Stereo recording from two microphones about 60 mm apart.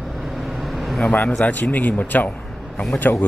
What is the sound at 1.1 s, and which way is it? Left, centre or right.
Speech, left.